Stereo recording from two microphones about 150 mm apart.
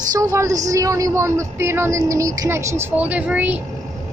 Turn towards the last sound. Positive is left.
turn(degrees=-10)  # may be behind; listen again after turning